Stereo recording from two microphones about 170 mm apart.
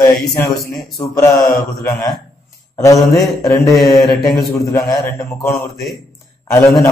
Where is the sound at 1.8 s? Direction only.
25° left (ahead or behind).